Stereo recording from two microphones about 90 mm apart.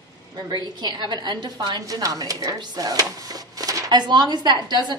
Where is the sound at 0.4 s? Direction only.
50° right (ahead or behind).